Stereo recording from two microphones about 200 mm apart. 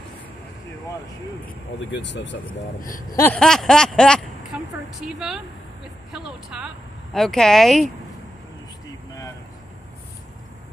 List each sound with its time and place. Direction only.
1.9 s speech: 65° left (ahead or behind)
2.6 s speech: 45° left (ahead or behind)
3.2 s a woman's voice: 5° left (ahead or behind)
4.5 s a sound: 5° right (ahead or behind)
5.0 s a woman's voice: 5° right (ahead or behind)